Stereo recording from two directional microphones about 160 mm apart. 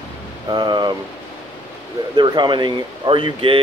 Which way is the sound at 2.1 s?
30° right (ahead or behind).